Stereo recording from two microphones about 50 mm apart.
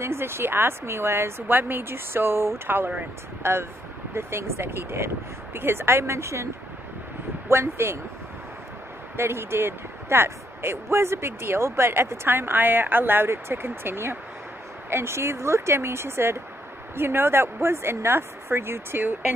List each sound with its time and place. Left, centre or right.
0.0 s speech: right
1.5 s speech: right
7.4 s speech: right
9.1 s speech: right
13.3 s speech: right